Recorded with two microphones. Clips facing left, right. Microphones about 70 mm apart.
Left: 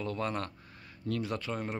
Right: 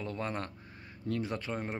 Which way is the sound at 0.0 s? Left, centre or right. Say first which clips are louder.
Left 2 dB; right.